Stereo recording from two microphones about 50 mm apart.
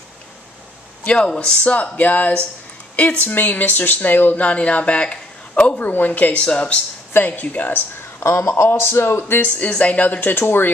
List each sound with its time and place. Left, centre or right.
1.0 s speech: left
4.5 s speech: left
8.2 s a man's voice: left
9.4 s speech: left
10.2 s a man's voice: left